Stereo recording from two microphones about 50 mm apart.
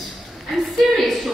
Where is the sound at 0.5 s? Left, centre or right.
Centre.